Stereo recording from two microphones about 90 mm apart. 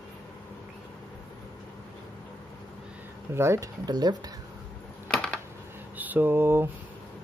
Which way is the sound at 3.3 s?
30° right (ahead or behind).